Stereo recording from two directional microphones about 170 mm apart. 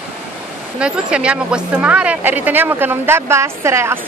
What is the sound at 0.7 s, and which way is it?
Speech, 5° right (ahead or behind).